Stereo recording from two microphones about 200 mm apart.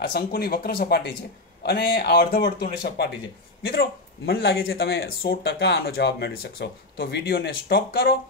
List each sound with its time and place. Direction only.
0.0 s speech: 50° left (ahead or behind)